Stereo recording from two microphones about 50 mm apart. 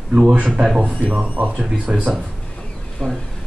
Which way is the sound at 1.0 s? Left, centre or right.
Right.